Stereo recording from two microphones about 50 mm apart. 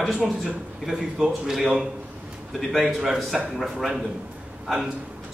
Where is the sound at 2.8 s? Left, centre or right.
Centre.